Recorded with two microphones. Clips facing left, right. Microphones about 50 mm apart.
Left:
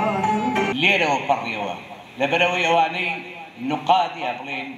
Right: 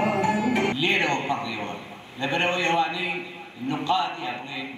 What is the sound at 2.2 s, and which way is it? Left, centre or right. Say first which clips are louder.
A man's voice: left 5 dB; left.